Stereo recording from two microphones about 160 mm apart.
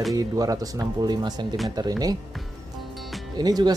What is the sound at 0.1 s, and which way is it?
Speech, 20° right (ahead or behind).